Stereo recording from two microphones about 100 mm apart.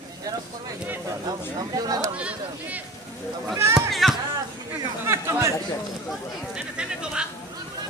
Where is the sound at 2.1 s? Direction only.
10° right (ahead or behind).